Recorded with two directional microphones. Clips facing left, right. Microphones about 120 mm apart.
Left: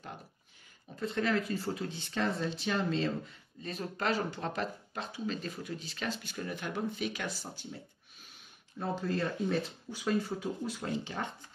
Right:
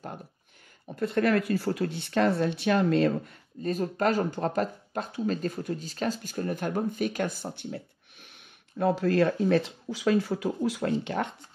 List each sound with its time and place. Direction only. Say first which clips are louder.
0.8 s speech: right 7 dB; 60° right (ahead or behind)
8.7 s speech: right 10 dB; 75° right (ahead or behind)